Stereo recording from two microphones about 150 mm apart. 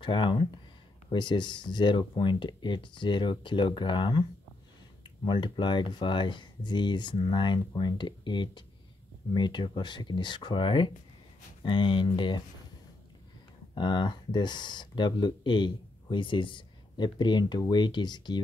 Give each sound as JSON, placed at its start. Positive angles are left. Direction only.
{"t": 0.0, "sound": "speech", "side_deg": 35}
{"t": 13.7, "sound": "speech", "side_deg": 30}